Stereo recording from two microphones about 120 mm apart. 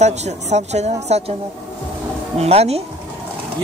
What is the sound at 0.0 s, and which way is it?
Speech, 70° right (ahead or behind).